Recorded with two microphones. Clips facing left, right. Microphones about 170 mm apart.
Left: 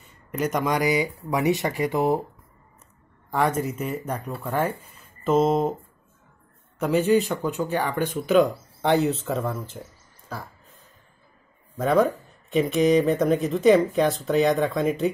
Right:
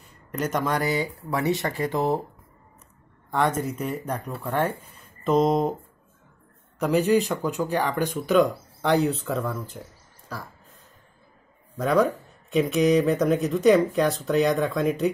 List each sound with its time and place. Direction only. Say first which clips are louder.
0.0 s speech: left 2 dB; 5° left (ahead or behind)
1.9 s speech: left 2 dB; 5° left (ahead or behind)
3.3 s speech: left 1 dB; 5° left (ahead or behind)
6.8 s speech: even; centre (ahead or behind)
11.7 s speech: left 1 dB; centre (ahead or behind)